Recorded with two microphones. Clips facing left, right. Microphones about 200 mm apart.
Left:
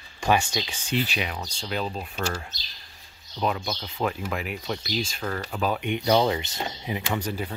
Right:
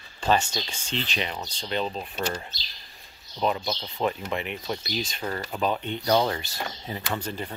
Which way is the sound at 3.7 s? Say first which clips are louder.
Right 1 dB; centre (ahead or behind).